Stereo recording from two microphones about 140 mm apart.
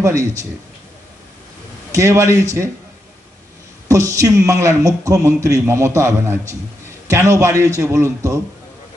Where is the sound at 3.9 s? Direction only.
20° right (ahead or behind).